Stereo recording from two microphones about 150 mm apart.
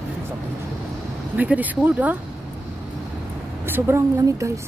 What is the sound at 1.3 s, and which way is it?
Speech, 10° right (ahead or behind).